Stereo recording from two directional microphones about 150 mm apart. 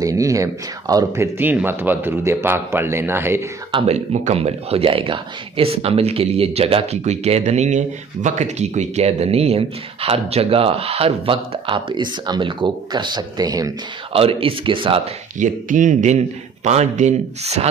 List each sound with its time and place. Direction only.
0.0 s speech: 20° right (ahead or behind)
3.7 s speech: 45° right (ahead or behind); by 13.7 s 25° right (ahead or behind)
14.1 s speech: 40° right (ahead or behind)
15.3 s a man's voice: 55° right (ahead or behind)